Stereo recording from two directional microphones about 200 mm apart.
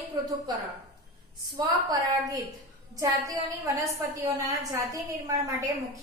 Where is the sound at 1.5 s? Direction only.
20° right (ahead or behind).